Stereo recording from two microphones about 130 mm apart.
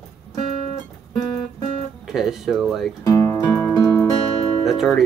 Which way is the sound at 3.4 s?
10° left (ahead or behind).